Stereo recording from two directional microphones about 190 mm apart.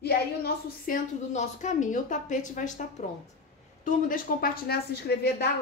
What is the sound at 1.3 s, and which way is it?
A woman's voice, 40° left (ahead or behind).